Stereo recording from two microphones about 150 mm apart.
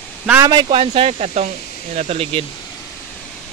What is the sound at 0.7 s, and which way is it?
Speech, 40° right (ahead or behind).